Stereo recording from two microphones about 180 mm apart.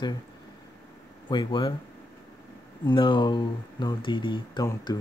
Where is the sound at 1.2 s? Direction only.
25° left (ahead or behind).